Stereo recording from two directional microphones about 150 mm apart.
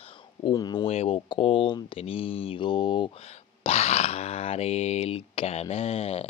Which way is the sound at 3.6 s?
45° left (ahead or behind).